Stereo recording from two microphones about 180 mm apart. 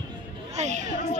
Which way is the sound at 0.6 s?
40° right (ahead or behind).